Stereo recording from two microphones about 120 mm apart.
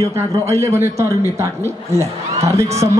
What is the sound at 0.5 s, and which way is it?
A man's voice, 25° right (ahead or behind).